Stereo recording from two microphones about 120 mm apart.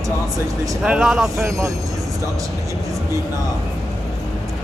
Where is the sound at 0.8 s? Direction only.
5° right (ahead or behind).